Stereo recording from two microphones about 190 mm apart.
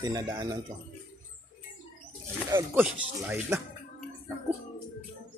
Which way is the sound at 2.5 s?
10° right (ahead or behind).